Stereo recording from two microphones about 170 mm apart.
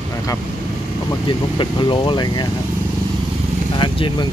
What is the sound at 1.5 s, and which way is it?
Speech, 30° left (ahead or behind).